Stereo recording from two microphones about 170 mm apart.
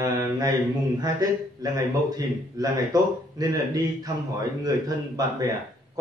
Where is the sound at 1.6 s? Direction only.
20° right (ahead or behind).